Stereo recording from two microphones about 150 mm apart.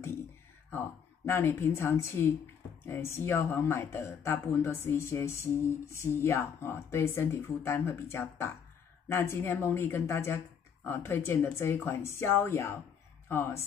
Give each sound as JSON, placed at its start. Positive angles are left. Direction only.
{"t": 0.7, "sound": "a woman's voice", "side_deg": 15}